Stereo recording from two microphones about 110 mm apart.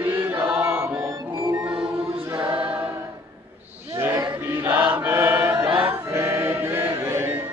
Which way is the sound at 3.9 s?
30° right (ahead or behind).